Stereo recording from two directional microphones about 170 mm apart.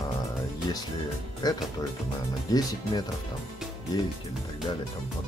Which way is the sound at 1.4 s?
25° left (ahead or behind).